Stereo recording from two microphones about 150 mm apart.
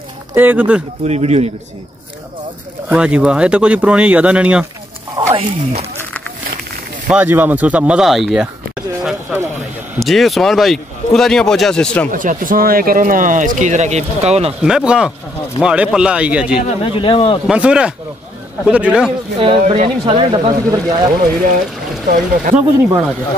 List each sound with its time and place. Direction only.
0.3 s speech: 10° right (ahead or behind)
1.0 s speech: 45° right (ahead or behind)
2.9 s speech: 10° right (ahead or behind)
5.3 s speech: 40° right (ahead or behind)
7.1 s speech: 10° right (ahead or behind); by 12.1 s 5° left (ahead or behind)
12.1 s speech: 65° right (ahead or behind); by 14.5 s 45° right (ahead or behind)
14.6 s speech: 5° right (ahead or behind)
16.6 s speech: 35° left (ahead or behind)
17.5 s speech: 5° right (ahead or behind)
19.4 s speech: 35° right (ahead or behind)
20.7 s speech: 25° right (ahead or behind)
22.1 s speech: 60° right (ahead or behind)